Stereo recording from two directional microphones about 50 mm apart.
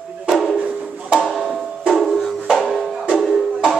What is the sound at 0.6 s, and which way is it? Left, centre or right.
Music, right.